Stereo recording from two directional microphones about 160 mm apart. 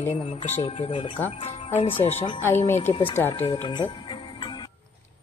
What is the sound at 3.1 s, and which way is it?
Speech, 15° left (ahead or behind).